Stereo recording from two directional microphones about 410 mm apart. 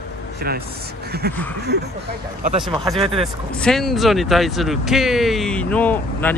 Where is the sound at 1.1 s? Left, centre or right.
Right.